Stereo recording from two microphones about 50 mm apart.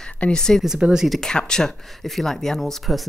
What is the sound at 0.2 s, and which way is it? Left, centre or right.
Speech, centre.